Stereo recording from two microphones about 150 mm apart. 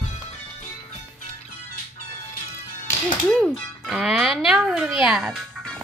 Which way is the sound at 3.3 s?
Centre (ahead or behind).